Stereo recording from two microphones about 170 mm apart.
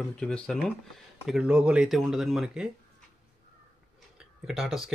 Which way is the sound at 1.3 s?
5° right (ahead or behind).